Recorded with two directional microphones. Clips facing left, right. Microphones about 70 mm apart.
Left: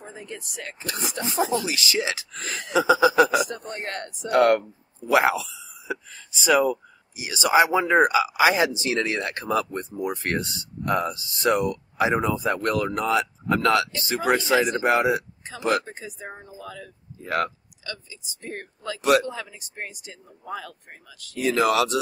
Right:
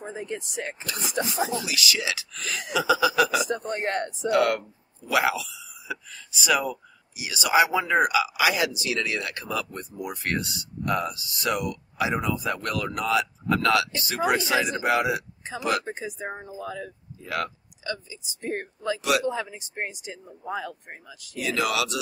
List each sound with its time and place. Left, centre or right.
0.0 s speech: centre
0.8 s speech: left
3.4 s speech: right
4.3 s speech: left
15.8 s speech: right
17.2 s speech: left
17.8 s speech: right
18.9 s speech: left
19.2 s speech: right
21.4 s speech: left